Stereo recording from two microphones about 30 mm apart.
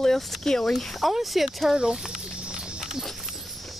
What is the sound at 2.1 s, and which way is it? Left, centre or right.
Snake, right.